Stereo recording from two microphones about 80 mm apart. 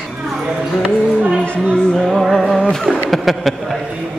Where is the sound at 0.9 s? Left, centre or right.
Centre.